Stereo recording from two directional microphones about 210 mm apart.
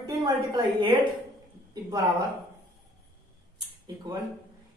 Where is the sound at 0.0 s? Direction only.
20° right (ahead or behind).